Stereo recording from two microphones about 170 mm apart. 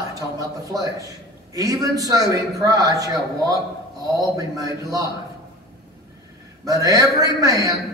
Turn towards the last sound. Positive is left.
turn(degrees=-20)  # may be behind; listen again after turning